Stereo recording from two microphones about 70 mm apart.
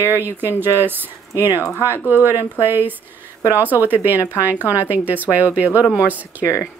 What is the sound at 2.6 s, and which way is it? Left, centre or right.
Speech, right.